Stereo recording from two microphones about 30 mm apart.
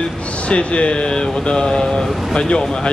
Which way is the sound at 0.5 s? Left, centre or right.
Left.